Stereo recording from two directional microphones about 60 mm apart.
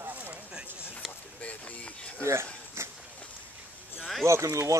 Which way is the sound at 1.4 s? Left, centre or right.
Left.